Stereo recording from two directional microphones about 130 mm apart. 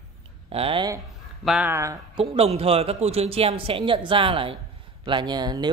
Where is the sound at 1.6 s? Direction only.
20° right (ahead or behind).